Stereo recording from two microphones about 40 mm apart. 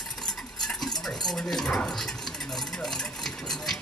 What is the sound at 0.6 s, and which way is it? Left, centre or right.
Stir, centre.